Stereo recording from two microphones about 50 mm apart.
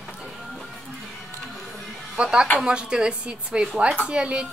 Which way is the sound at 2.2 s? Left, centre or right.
Centre.